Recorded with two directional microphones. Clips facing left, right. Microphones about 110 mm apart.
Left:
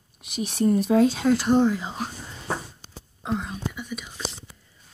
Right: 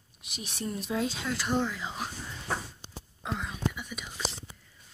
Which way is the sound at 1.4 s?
25° left (ahead or behind).